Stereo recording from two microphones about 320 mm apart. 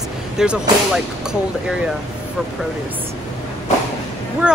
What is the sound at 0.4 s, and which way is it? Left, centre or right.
Speech, centre.